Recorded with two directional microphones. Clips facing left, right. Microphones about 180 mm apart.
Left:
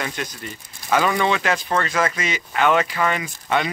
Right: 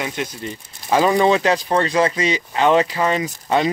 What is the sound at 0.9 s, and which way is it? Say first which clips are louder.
Speech: right 4 dB; 30° right (ahead or behind).